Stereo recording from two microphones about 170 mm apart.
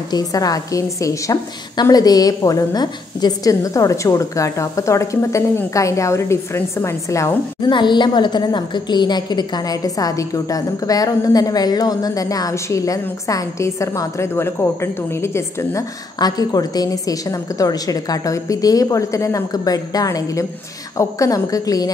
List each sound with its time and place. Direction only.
0.1 s a woman's voice: 20° left (ahead or behind)